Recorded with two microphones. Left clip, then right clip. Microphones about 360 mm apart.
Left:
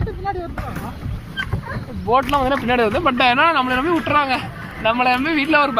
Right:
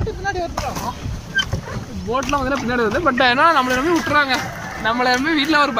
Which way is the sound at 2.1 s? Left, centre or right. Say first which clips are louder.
Left 3 dB; centre.